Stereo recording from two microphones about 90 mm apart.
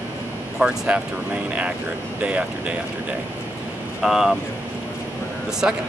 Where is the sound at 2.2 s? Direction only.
15° right (ahead or behind).